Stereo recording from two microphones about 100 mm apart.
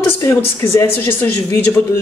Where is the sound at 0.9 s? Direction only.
20° left (ahead or behind).